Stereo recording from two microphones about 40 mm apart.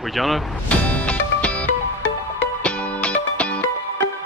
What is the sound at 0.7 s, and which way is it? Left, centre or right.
Music, left.